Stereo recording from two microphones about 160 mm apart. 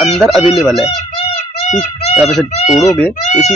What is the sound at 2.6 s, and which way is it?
Speech, 45° left (ahead or behind).